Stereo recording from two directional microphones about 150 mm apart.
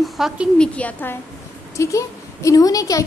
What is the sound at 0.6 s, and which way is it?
A woman's voice, 10° left (ahead or behind).